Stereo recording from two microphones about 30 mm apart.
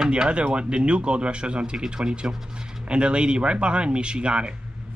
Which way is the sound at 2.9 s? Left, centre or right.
Right.